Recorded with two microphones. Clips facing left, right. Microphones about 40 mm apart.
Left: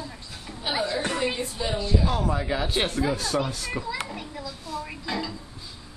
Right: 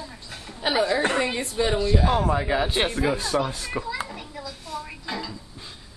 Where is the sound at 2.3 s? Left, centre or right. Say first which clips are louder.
Right 3 dB; centre.